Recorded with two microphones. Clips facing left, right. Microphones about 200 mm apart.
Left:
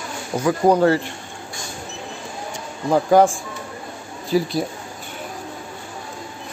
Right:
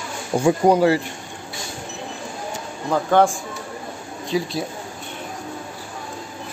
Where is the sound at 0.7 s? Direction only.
10° right (ahead or behind).